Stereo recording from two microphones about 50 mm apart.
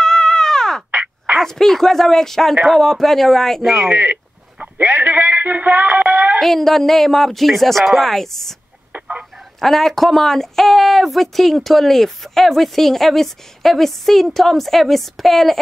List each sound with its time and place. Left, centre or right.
0.0 s caw: centre
1.4 s a woman's voice: centre
3.9 s speech: right
4.8 s a sound: right
6.4 s a woman's voice: centre
9.6 s a woman's voice: centre